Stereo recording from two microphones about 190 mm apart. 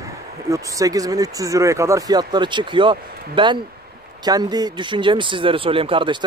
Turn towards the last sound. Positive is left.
turn(degrees=-25)  # may be behind; listen again after turning